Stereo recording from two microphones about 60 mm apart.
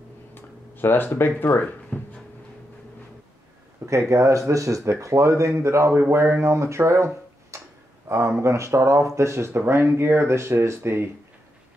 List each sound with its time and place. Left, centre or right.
0.3 s a sound: left
1.9 s a sound: left
4.1 s speech: right
7.5 s tick-tock: right
8.1 s speech: right
9.6 s speech: right